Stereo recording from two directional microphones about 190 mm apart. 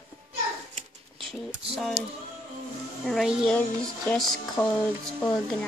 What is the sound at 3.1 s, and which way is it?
Speech, centre (ahead or behind).